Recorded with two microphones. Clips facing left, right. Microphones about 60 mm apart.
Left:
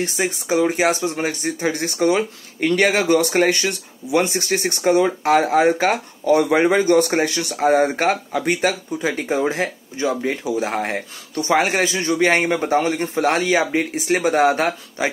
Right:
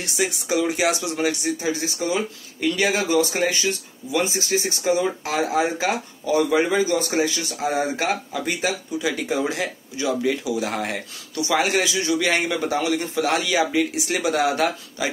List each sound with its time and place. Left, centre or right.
0.0 s a man's voice: left